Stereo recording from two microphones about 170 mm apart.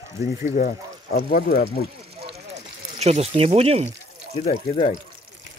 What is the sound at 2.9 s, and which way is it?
Speech, 40° right (ahead or behind).